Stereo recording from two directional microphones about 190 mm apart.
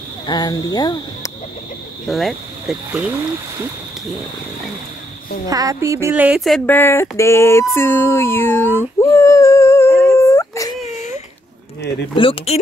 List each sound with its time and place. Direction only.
0.3 s speech: 20° left (ahead or behind)
2.0 s speech: centre (ahead or behind)
5.5 s speech: 20° right (ahead or behind); by 7.6 s 15° left (ahead or behind)
7.7 s a sound: 10° left (ahead or behind)
12.2 s speech: 30° left (ahead or behind)